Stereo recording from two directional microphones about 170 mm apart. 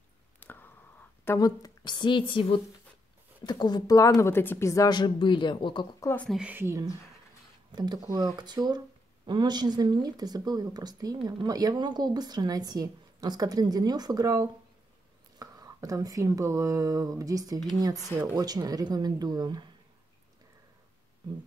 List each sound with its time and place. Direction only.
0.4 s a sound: 10° left (ahead or behind)
1.2 s speech: 20° left (ahead or behind)
6.0 s speech: 10° left (ahead or behind)
6.3 s speech: 10° right (ahead or behind)